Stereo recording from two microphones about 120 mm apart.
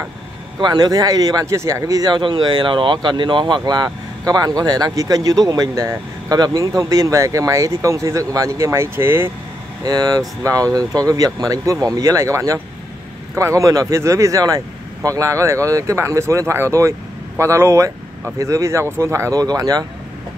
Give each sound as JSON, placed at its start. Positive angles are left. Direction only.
{"t": 0.6, "sound": "speech", "side_deg": -35}
{"t": 9.8, "sound": "speech", "side_deg": -30}